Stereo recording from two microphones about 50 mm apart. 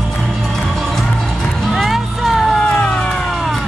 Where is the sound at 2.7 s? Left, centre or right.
Left.